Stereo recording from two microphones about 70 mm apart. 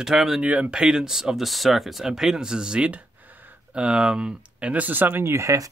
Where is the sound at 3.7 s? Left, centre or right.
Centre; by 5.3 s right.